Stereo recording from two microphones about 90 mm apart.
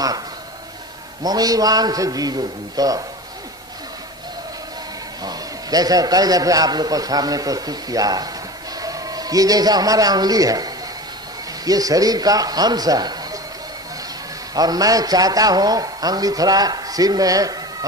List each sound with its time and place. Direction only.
1.2 s a man's voice: 45° right (ahead or behind)
5.2 s a man's voice: 45° right (ahead or behind)
14.5 s a man's voice: 45° right (ahead or behind)